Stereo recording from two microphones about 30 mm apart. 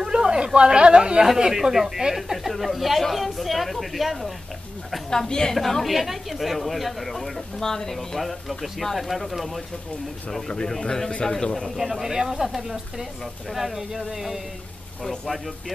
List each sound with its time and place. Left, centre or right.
0.0 s speech: right
1.4 s speech: centre
5.5 s a woman's voice: centre
8.2 s speech: centre
10.7 s a woman's voice: centre
11.7 s speech: centre
13.2 s speech: centre